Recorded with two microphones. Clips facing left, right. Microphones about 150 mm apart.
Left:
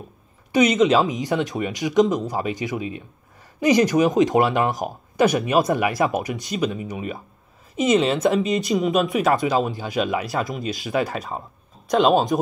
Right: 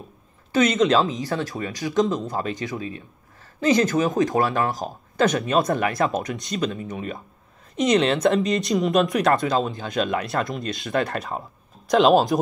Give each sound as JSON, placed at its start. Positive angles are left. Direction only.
{"t": 0.5, "sound": "speech", "side_deg": 10}